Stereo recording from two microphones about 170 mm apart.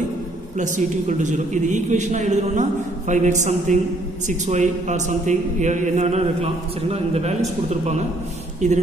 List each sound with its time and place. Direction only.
0.6 s a man's voice: 45° right (ahead or behind)
8.5 s speech: 45° right (ahead or behind)